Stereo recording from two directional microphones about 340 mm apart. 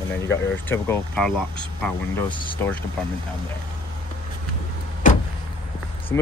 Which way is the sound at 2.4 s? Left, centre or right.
Centre.